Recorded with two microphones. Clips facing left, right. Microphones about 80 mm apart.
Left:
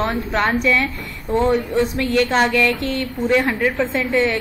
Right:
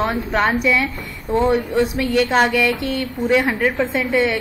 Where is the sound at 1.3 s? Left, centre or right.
Centre.